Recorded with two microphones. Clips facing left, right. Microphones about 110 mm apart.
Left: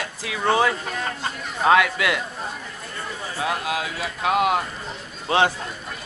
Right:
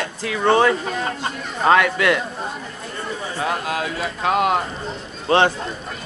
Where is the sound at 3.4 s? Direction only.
45° right (ahead or behind).